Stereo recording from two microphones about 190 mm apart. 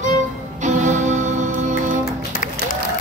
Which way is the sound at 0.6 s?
40° right (ahead or behind).